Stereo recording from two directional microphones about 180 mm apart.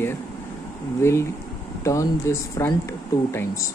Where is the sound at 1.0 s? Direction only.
15° left (ahead or behind).